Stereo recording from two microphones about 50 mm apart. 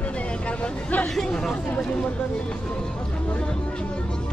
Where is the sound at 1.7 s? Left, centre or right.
Centre.